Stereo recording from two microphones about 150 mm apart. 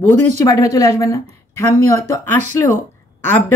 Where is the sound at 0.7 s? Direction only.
20° left (ahead or behind).